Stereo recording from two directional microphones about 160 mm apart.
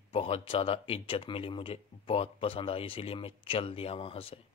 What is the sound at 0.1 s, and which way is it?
Speech, 35° left (ahead or behind).